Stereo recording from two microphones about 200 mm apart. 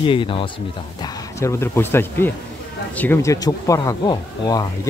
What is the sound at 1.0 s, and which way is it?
Speech, 15° left (ahead or behind).